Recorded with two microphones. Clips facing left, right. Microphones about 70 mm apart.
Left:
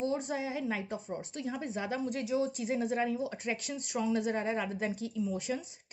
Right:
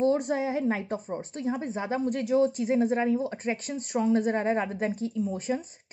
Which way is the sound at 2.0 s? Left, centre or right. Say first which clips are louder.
Right 10 dB; right.